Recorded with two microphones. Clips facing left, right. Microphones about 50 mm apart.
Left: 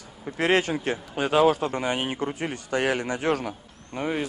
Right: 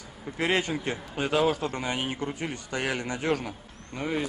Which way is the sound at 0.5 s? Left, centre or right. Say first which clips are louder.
Left 5 dB; centre.